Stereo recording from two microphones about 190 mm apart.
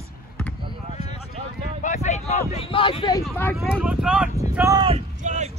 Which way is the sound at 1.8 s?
40° left (ahead or behind).